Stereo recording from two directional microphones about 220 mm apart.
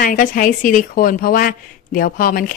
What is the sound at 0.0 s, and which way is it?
A woman's voice, 40° left (ahead or behind).